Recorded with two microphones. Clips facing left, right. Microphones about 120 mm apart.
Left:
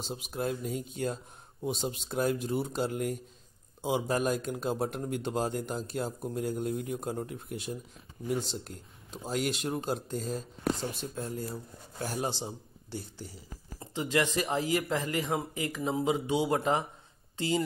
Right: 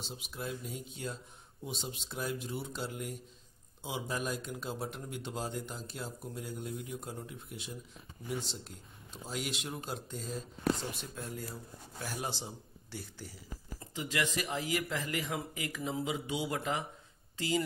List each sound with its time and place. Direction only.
0.0 s a man's voice: 45° left (ahead or behind); by 17.6 s 25° left (ahead or behind)